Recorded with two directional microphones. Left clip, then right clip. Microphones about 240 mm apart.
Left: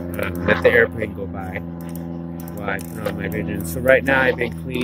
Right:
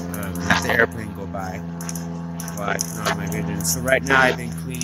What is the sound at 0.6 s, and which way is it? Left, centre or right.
Speech, centre.